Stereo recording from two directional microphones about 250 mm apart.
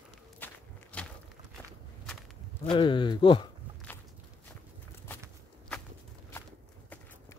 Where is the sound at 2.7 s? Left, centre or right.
Centre.